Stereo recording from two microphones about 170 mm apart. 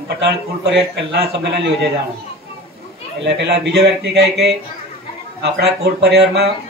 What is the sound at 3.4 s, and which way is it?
Speech, 80° right.